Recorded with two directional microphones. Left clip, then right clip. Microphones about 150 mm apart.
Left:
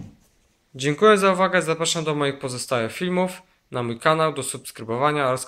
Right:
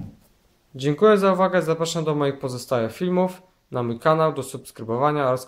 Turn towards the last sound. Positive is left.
turn(degrees=-5)  # may be behind; listen again after turning